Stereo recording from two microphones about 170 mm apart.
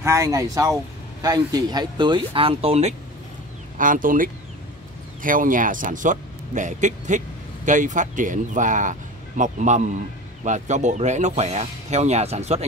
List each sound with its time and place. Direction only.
0.0 s speech: 20° right (ahead or behind); by 2.9 s 35° right (ahead or behind)
3.7 s speech: 50° right (ahead or behind)